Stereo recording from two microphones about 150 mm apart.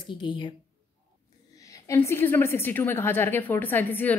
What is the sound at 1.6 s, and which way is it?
A woman's voice, 20° left (ahead or behind).